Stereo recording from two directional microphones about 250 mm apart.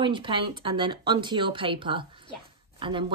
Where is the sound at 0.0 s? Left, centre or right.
Centre.